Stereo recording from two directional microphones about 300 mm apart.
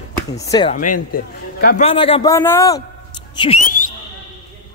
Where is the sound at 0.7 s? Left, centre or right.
Left; by 2.8 s centre.